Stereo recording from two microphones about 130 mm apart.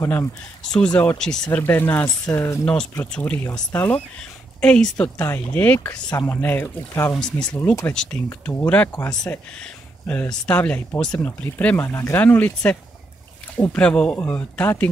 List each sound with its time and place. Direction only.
0.0 s speech: 25° left (ahead or behind)
0.7 s speech: 10° left (ahead or behind)
1.6 s speech: 15° left (ahead or behind)
7.2 s speech: 5° left (ahead or behind)
8.3 s speech: 15° left (ahead or behind)